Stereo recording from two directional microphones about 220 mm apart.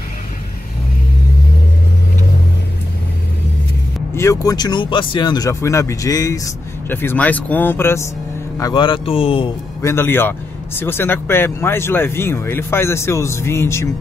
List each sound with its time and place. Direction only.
4.1 s speech: 15° left (ahead or behind)
9.8 s speech: 10° left (ahead or behind)